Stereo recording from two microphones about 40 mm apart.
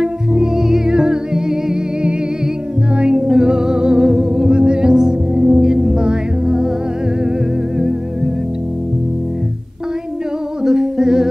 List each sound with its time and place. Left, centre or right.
0.0 s music: centre
3.0 s music: centre
10.6 s humming: centre